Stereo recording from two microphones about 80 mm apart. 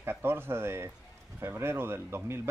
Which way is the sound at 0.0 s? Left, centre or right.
Right.